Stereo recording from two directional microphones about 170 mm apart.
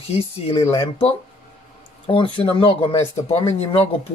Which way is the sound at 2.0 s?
30° left (ahead or behind).